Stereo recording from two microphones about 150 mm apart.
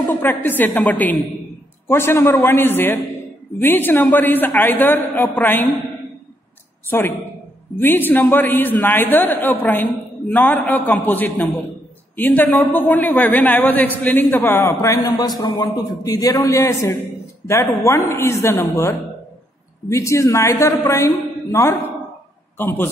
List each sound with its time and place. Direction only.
0.1 s a woman's voice: 15° left (ahead or behind)
6.9 s a woman's voice: 15° left (ahead or behind)